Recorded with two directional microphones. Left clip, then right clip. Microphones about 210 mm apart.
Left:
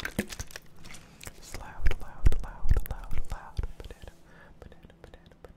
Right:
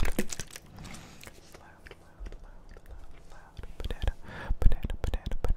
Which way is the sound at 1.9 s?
45° left (ahead or behind).